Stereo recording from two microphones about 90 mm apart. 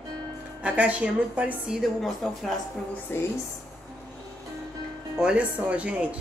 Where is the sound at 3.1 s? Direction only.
25° left (ahead or behind).